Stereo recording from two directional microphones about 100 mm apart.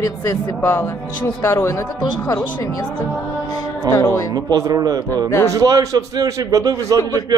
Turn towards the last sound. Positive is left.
turn(degrees=-35)  # may be behind; listen again after turning